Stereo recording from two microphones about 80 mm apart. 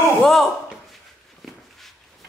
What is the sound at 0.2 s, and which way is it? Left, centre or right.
Speech, centre.